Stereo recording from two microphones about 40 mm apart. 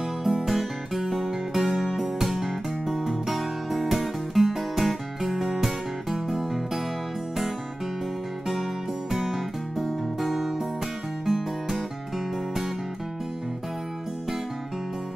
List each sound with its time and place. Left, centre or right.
0.2 s music: centre
9.1 s music: centre